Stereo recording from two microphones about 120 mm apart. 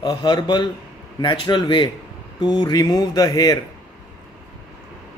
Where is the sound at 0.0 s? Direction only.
35° left (ahead or behind).